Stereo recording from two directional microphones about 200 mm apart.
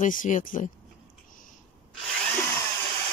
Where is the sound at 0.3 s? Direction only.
40° left (ahead or behind).